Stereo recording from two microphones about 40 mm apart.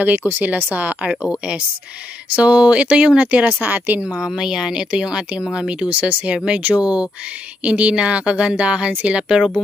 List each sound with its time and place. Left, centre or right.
0.0 s speech: right
1.2 s speech: right
3.6 s speech: right
4.2 s speech: centre
5.9 s speech: right
7.6 s speech: right